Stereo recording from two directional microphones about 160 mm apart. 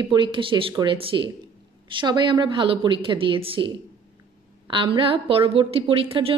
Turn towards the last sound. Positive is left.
turn(degrees=-35)  # may be behind; listen again after turning